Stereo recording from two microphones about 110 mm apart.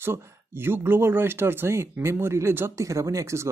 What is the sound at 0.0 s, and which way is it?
Speech, 20° right (ahead or behind).